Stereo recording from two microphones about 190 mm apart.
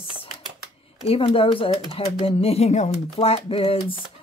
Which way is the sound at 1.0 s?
30° left (ahead or behind).